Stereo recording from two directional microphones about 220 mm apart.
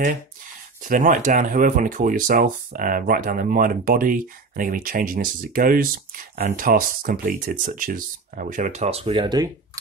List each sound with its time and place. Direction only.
0.8 s speech: 35° right (ahead or behind); by 9.5 s 20° right (ahead or behind)